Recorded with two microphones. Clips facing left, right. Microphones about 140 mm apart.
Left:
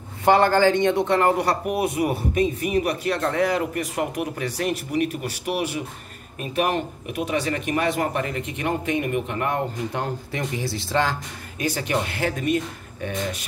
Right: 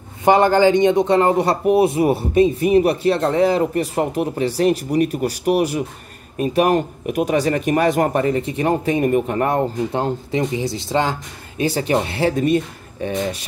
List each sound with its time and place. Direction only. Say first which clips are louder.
0.2 s a man's voice: right 4 dB; 15° right (ahead or behind)